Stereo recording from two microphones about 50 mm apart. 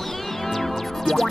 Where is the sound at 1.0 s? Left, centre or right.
Centre.